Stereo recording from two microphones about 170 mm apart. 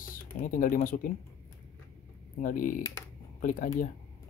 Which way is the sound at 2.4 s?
55° left (ahead or behind).